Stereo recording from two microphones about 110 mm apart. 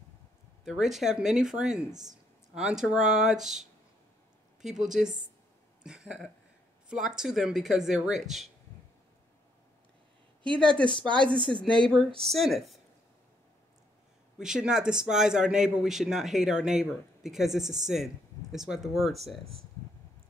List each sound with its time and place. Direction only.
0.7 s a man's voice: 5° right (ahead or behind)
1.9 s speech: 35° right (ahead or behind)
2.5 s a man's voice: 5° right (ahead or behind)
10.6 s a man's voice: 10° left (ahead or behind)
14.4 s a man's voice: 5° right (ahead or behind)